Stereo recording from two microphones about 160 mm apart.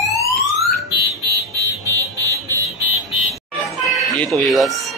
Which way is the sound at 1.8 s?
20° right (ahead or behind).